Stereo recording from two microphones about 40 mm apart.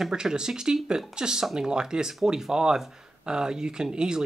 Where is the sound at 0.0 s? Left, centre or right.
Centre.